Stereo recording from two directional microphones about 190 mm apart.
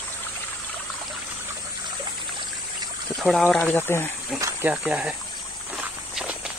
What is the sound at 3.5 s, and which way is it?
Speech, 10° left (ahead or behind).